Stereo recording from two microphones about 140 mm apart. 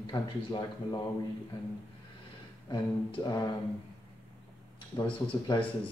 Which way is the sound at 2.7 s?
30° left (ahead or behind).